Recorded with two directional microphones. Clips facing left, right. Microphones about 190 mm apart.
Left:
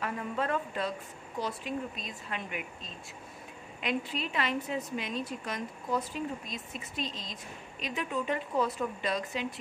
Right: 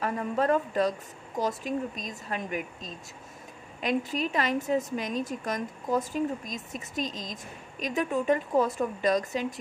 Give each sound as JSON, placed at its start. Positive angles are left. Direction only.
{"t": 0.0, "sound": "a woman's voice", "side_deg": -40}